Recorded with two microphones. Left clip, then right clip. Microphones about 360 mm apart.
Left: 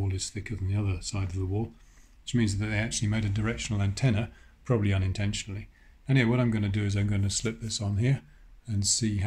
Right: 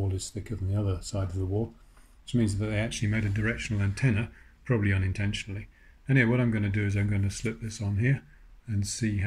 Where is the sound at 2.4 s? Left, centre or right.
Centre.